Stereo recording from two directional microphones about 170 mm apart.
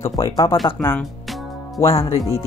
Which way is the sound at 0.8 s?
10° left (ahead or behind).